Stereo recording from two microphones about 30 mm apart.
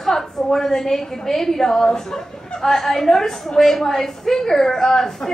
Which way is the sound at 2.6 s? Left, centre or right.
Centre.